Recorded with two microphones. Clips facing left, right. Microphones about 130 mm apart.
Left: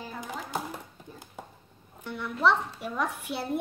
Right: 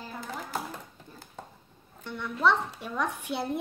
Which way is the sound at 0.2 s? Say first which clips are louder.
Left 1 dB; 15° left (ahead or behind).